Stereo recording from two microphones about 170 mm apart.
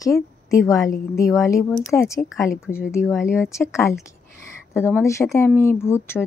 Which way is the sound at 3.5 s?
15° left (ahead or behind).